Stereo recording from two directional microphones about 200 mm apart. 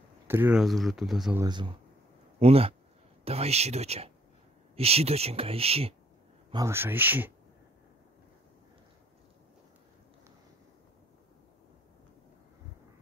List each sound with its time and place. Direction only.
0.3 s speech: 10° right (ahead or behind)
1.4 s speech: 25° right (ahead or behind)
6.5 s speech: 15° right (ahead or behind)